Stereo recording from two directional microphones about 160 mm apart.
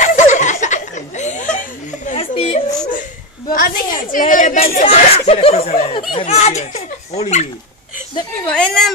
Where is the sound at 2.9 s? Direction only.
55° left (ahead or behind).